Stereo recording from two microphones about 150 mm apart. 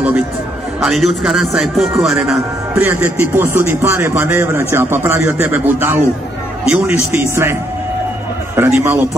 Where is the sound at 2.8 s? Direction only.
15° right (ahead or behind).